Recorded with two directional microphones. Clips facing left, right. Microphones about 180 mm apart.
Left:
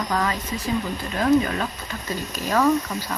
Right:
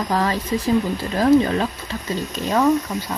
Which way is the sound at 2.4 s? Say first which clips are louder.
Right 2 dB; 20° right (ahead or behind).